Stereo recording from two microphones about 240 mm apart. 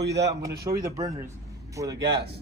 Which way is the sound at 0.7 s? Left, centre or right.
Centre.